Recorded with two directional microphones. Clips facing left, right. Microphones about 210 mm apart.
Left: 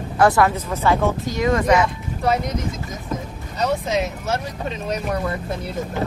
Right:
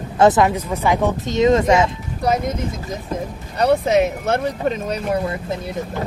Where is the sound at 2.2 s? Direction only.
40° right (ahead or behind).